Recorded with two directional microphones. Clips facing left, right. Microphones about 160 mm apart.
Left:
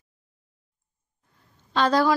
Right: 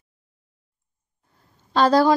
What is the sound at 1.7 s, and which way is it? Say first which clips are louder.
Speech: right 4 dB; 35° right (ahead or behind).